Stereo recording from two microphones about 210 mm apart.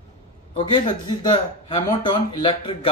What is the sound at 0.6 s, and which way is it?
Speech, 25° left (ahead or behind).